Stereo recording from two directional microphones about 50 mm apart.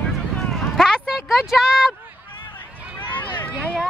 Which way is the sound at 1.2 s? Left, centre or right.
Centre.